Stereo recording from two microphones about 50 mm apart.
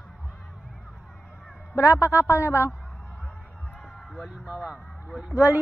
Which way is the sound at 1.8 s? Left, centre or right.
Left.